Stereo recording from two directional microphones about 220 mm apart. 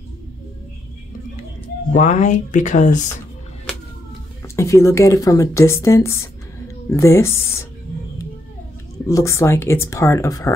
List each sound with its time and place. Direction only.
1.9 s speech: 35° left (ahead or behind)
4.4 s speech: 15° left (ahead or behind)
9.0 s speech: 15° left (ahead or behind)